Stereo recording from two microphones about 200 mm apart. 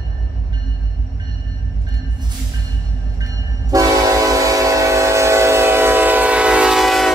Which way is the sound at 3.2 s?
20° right (ahead or behind).